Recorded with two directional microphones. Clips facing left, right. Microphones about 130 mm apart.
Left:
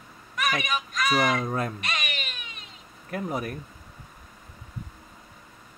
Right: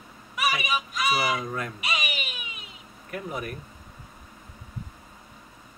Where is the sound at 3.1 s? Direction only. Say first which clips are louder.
Left 3 dB; 35° left (ahead or behind).